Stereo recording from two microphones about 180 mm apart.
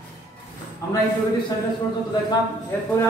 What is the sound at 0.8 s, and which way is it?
Speech, 15° left (ahead or behind).